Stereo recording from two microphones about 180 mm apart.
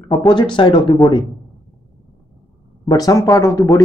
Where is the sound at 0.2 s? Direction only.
25° left (ahead or behind).